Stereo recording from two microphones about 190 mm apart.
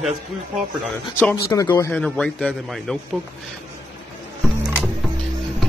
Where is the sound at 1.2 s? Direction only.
10° left (ahead or behind).